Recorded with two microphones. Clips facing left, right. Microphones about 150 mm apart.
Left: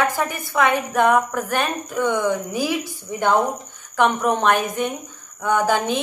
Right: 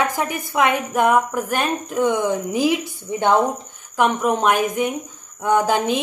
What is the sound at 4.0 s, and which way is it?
Speech, 10° right (ahead or behind).